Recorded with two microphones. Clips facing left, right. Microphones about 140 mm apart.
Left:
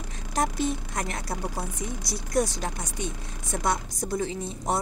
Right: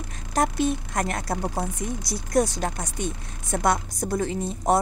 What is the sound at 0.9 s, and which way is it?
A woman's voice, 55° right (ahead or behind).